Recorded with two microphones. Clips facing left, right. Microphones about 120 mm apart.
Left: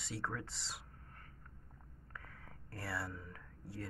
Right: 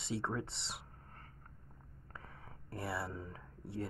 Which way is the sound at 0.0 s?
25° right (ahead or behind).